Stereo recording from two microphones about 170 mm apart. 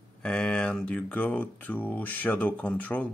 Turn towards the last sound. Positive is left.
turn(degrees=10)  # may be behind; listen again after turning